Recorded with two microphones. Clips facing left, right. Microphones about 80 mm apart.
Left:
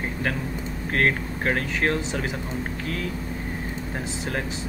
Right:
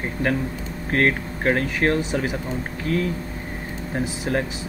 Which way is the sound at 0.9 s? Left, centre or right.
Centre.